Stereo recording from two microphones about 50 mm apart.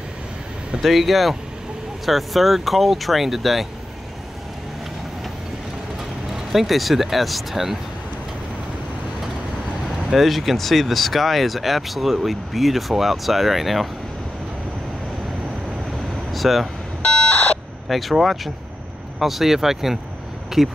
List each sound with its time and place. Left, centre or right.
0.8 s speech: centre
6.3 s speech: centre
10.1 s speech: centre
16.3 s vehicle: centre
17.0 s alarm clock: left
17.8 s speech: centre